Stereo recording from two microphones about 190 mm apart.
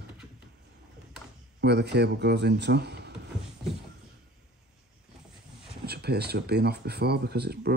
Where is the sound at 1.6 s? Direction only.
60° right (ahead or behind).